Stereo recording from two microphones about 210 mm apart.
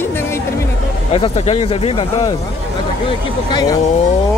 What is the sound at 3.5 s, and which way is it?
Speech, 20° left (ahead or behind).